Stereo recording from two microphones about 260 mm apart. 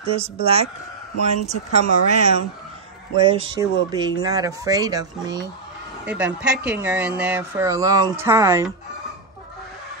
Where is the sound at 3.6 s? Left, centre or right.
Centre.